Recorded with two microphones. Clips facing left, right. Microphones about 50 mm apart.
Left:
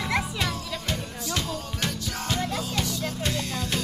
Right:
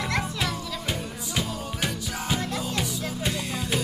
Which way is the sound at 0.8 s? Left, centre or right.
Centre.